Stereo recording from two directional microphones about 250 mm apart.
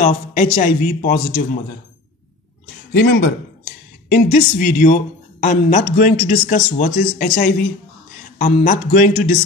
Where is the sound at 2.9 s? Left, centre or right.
Left.